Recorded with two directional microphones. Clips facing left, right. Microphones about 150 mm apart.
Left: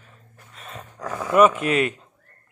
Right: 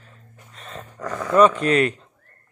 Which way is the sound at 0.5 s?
Centre (ahead or behind).